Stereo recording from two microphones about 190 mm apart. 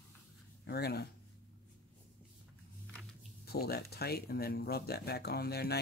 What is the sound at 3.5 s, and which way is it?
Speech, 55° left (ahead or behind).